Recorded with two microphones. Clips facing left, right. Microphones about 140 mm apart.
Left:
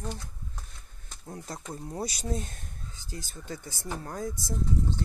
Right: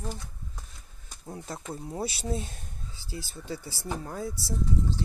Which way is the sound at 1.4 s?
5° right (ahead or behind).